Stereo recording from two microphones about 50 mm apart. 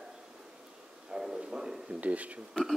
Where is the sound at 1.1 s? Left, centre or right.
Centre.